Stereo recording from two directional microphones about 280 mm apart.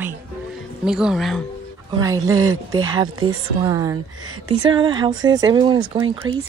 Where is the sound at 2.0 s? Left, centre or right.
Centre.